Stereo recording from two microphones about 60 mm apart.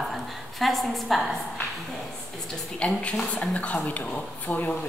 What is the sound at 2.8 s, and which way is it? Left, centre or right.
Speech, centre.